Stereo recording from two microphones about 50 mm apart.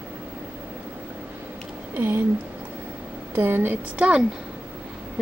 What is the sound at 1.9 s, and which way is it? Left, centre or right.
Speech, right.